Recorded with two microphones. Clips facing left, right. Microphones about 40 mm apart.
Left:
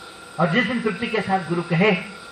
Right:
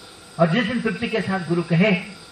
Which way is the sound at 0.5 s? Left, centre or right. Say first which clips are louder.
Left 1 dB; left.